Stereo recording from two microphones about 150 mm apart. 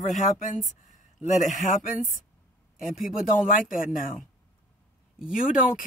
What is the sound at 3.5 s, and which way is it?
Speech, 65° left (ahead or behind).